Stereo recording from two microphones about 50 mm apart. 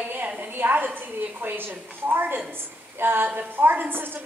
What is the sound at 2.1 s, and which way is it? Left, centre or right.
A woman's voice, right.